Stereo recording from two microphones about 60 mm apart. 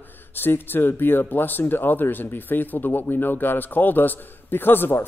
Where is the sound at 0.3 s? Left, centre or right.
Left.